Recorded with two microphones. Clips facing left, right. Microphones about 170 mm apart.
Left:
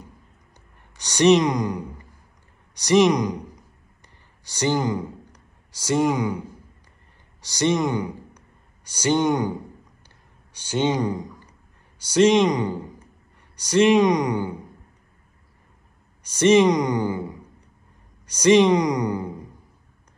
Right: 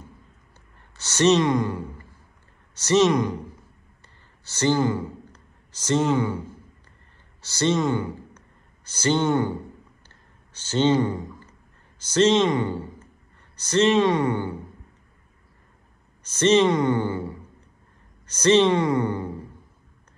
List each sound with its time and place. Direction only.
0.9 s speech: 15° left (ahead or behind)
4.5 s speech: 15° left (ahead or behind)
7.4 s a man's voice: 15° left (ahead or behind)
10.0 s a sound: 15° left (ahead or behind)
12.0 s a man's voice: 10° left (ahead or behind)
16.3 s a woman's voice: 10° left (ahead or behind)